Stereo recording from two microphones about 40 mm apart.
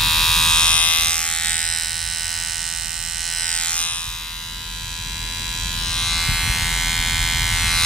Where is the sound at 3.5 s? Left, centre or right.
Left.